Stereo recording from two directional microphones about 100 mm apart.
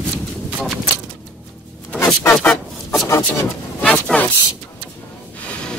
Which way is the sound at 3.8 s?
10° left (ahead or behind).